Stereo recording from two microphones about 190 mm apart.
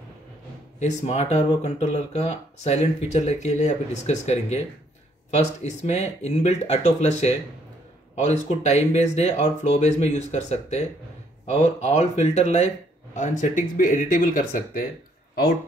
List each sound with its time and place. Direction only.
0.7 s speech: 35° left (ahead or behind)